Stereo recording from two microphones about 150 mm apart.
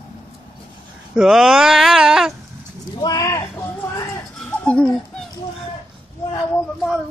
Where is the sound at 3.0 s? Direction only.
25° left (ahead or behind).